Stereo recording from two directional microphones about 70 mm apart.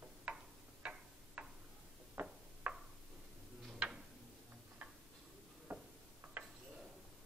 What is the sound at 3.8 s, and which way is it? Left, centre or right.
Tick-tock, centre.